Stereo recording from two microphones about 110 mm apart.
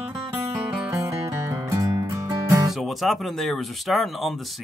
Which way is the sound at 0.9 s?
30° right (ahead or behind).